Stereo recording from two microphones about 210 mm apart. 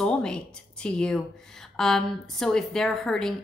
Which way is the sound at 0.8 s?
5° left (ahead or behind).